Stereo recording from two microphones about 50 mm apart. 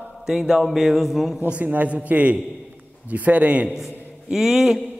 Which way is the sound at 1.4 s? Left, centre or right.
Right.